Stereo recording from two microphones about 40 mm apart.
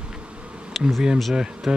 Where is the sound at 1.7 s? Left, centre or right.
Right.